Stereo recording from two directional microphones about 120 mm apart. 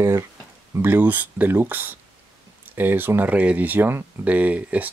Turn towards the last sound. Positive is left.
turn(degrees=-10)  # may be behind; listen again after turning